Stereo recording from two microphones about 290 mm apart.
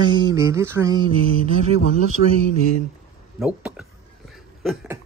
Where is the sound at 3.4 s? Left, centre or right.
Centre.